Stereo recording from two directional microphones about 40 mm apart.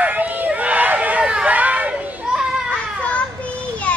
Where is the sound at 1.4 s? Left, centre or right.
Right.